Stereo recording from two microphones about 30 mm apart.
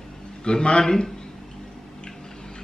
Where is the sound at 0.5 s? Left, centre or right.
Left.